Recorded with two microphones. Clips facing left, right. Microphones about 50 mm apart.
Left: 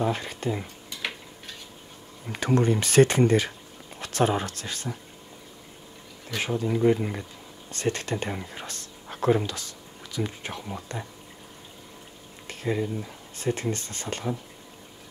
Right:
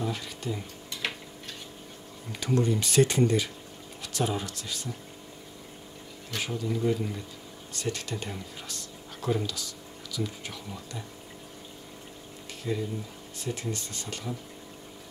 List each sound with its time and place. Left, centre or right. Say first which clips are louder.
0.0 s speech: left 6 dB; left
2.3 s speech: left 4 dB; left
6.3 s speech: left 5 dB; left
12.4 s a sound: left 4 dB; left
13.4 s speech: left 6 dB; left